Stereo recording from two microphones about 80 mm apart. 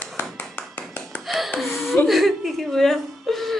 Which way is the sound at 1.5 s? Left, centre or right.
Centre.